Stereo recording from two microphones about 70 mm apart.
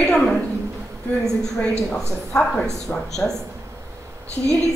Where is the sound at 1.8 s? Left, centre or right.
Centre.